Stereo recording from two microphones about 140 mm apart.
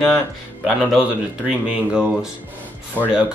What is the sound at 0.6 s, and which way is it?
Speech, 5° right (ahead or behind).